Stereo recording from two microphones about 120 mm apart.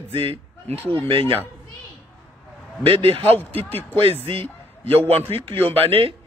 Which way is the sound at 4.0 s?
55° right (ahead or behind).